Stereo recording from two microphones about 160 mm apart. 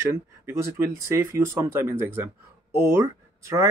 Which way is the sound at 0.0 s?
15° right (ahead or behind).